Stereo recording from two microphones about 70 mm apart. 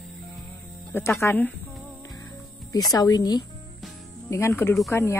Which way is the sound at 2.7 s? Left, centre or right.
Left.